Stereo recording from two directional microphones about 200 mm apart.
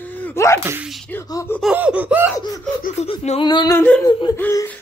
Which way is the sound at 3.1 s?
25° left (ahead or behind).